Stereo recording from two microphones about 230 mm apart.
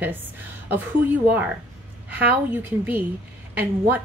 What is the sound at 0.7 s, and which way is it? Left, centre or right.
A woman's voice, centre.